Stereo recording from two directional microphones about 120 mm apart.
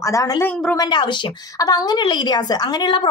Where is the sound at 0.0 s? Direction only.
25° left (ahead or behind).